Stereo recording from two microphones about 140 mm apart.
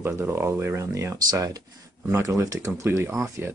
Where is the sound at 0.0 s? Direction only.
15° right (ahead or behind).